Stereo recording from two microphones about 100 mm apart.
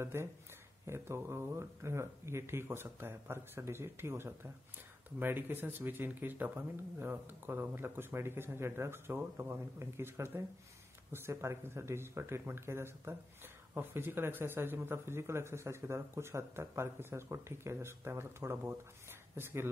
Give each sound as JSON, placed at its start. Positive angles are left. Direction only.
{"t": 0.0, "sound": "speech", "side_deg": -25}